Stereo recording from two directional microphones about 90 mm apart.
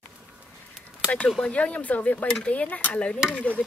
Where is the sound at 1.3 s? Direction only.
10° left (ahead or behind).